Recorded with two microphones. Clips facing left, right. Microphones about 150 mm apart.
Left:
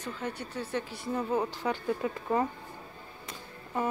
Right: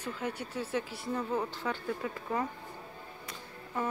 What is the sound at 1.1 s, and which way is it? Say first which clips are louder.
A woman's voice: left 3 dB; 15° left (ahead or behind).